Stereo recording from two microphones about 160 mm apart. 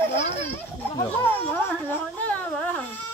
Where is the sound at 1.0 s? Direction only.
15° left (ahead or behind).